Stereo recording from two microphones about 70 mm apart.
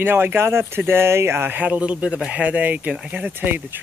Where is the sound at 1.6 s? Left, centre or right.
Centre.